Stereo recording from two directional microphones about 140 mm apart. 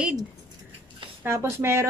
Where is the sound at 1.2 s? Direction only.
15° right (ahead or behind).